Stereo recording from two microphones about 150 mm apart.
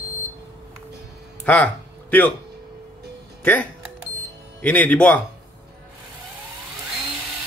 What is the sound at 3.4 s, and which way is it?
Speech, 10° left (ahead or behind).